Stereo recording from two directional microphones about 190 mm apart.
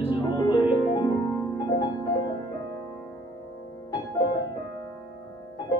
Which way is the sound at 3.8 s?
20° left (ahead or behind).